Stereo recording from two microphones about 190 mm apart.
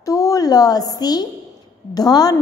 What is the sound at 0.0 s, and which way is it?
A woman's voice, 15° left (ahead or behind).